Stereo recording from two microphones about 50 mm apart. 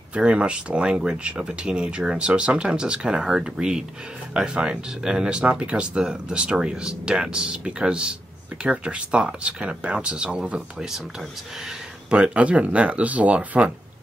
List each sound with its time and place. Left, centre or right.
0.1 s speech: right
12.1 s speech: right